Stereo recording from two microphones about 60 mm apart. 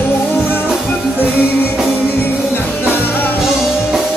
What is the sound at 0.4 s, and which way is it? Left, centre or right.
Music, left.